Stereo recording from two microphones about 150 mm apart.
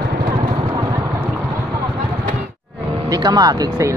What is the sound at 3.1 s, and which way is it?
Speech, 25° right (ahead or behind).